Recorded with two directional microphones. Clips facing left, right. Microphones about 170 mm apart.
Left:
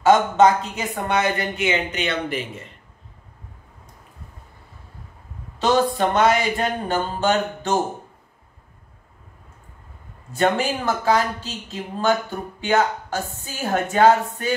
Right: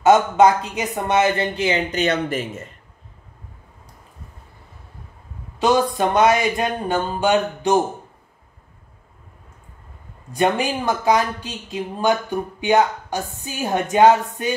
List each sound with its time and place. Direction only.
0.0 s speech: 15° right (ahead or behind); by 2.6 s 45° right (ahead or behind)
5.6 s speech: 15° right (ahead or behind)
10.3 s speech: 15° right (ahead or behind)